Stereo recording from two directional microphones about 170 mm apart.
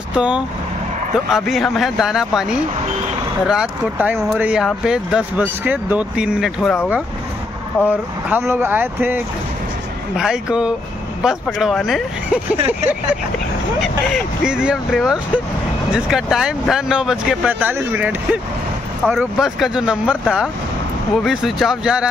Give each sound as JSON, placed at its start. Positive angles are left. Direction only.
{"t": 0.1, "sound": "speech", "side_deg": -5}
{"t": 8.3, "sound": "speech", "side_deg": -15}
{"t": 12.5, "sound": "speech", "side_deg": -35}
{"t": 13.7, "sound": "speech", "side_deg": -5}